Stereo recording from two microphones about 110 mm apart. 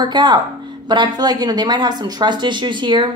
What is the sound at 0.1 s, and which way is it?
A woman's voice, 45° right (ahead or behind).